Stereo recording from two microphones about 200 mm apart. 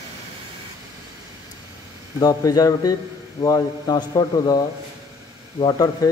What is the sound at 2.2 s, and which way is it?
A man's voice, 20° left (ahead or behind).